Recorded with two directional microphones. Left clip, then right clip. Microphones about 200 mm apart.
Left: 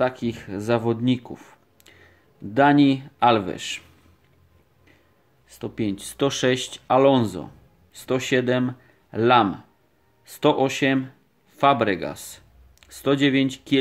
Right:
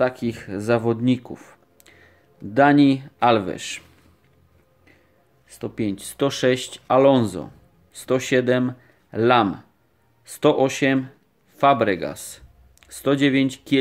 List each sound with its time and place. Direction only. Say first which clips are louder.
0.0 s speech: right 2 dB; 10° right (ahead or behind)
5.5 s speech: right 1 dB; 10° right (ahead or behind)